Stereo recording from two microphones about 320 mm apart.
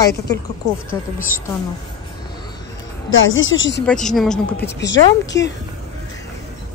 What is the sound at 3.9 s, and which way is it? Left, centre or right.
Speech, centre.